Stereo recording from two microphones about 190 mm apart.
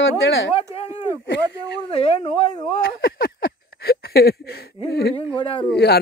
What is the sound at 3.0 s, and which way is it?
Speech, 50° left (ahead or behind).